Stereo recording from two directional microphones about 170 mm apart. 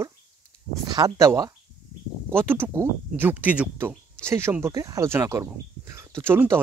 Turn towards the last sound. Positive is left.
turn(degrees=-15)  # may be behind; listen again after turning